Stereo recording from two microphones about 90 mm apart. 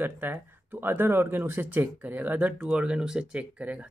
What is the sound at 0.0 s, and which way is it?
Speech, 20° right (ahead or behind).